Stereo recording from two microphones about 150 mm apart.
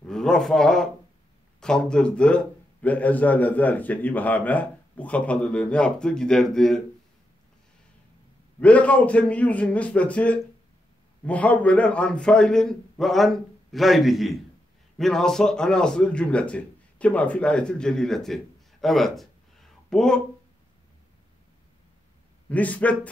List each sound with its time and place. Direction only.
0.0 s a man's voice: 5° left (ahead or behind)
8.5 s a man's voice: 10° left (ahead or behind)
22.5 s a man's voice: 10° left (ahead or behind)